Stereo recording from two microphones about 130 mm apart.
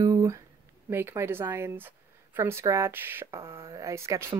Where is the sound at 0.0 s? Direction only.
25° right (ahead or behind).